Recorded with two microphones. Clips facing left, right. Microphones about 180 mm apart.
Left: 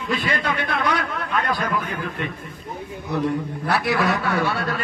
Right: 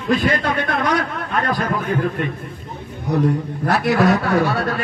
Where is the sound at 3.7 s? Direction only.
40° right (ahead or behind).